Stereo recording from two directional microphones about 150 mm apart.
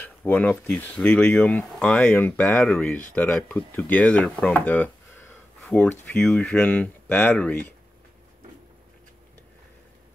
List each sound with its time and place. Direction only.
0.0 s speech: 10° left (ahead or behind)